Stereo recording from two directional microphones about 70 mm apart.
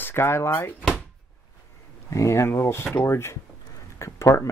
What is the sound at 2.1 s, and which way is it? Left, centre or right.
Speech, left.